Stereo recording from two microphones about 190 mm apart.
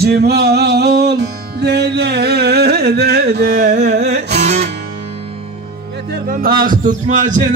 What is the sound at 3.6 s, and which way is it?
Music, 40° right (ahead or behind).